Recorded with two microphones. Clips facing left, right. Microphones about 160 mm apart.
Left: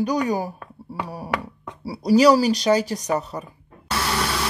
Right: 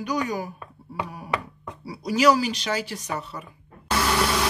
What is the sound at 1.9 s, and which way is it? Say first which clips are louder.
Speech: left 5 dB; 35° left (ahead or behind).